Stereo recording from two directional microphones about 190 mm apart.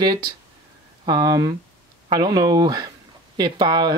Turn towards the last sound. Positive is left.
turn(degrees=-20)  # may be behind; listen again after turning